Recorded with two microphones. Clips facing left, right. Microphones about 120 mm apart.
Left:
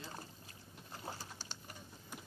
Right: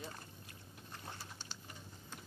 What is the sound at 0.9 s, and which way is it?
Typing, 25° left (ahead or behind).